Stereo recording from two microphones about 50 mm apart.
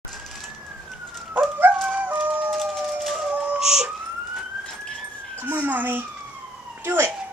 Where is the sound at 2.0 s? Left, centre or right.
Right.